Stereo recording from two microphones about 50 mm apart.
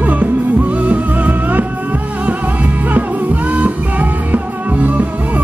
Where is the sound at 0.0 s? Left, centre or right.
Right.